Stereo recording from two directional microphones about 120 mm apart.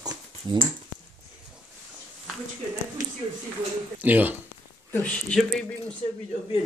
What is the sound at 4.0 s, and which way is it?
Speech, 15° right (ahead or behind).